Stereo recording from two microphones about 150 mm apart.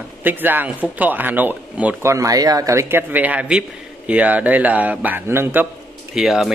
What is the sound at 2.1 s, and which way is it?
A man's voice, 20° right (ahead or behind).